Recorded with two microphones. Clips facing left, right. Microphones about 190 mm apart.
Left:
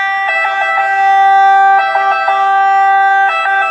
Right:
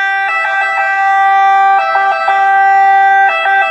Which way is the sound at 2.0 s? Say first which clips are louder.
Right 1 dB; 10° right (ahead or behind).